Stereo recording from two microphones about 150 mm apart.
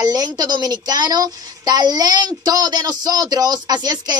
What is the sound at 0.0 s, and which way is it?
A woman's voice, 25° right (ahead or behind).